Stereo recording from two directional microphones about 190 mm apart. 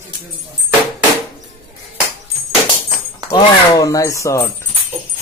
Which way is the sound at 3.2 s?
20° left (ahead or behind).